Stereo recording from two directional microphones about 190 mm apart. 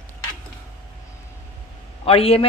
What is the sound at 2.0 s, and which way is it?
Speech, 30° left (ahead or behind).